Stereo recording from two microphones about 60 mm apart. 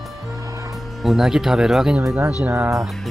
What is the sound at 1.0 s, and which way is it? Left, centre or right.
Speech, centre.